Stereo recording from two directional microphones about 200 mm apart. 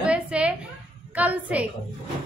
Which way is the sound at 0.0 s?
5° right (ahead or behind).